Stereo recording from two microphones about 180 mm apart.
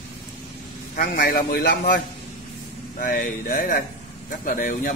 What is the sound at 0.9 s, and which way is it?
Speech, 50° left (ahead or behind).